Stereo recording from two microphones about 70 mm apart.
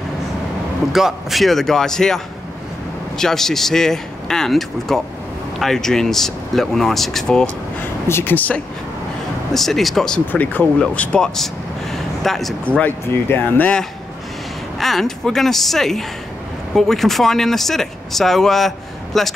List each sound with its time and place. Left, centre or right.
0.9 s speech: centre
8.1 s speech: left
9.5 s speech: centre
10.3 s speech: left
10.8 s speech: centre
11.3 s vehicle: centre
12.6 s speech: centre
13.1 s speech: left
14.8 s speech: centre